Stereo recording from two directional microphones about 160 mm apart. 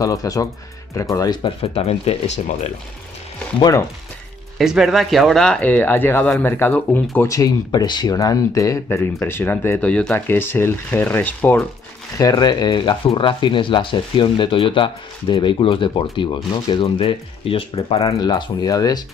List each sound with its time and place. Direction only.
0.0 s speech: 20° left (ahead or behind)
1.6 s speech: 40° left (ahead or behind)
3.5 s speech: 25° left (ahead or behind)
4.6 s speech: centre (ahead or behind)
12.2 s speech: 25° left (ahead or behind)
18.0 s speech: 25° left (ahead or behind)